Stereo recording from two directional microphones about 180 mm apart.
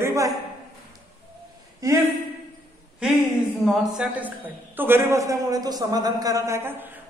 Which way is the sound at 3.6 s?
5° right (ahead or behind).